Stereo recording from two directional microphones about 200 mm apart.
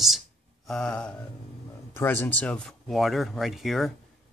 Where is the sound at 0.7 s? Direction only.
5° left (ahead or behind).